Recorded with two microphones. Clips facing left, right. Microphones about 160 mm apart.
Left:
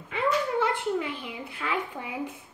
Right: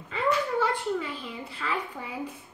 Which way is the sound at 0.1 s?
20° left (ahead or behind).